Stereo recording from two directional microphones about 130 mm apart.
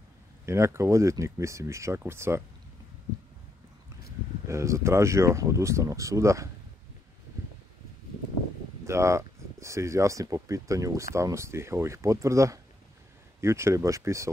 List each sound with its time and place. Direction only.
0.5 s speech: 20° right (ahead or behind)
4.5 s speech: 25° right (ahead or behind)
8.8 s speech: 20° right (ahead or behind)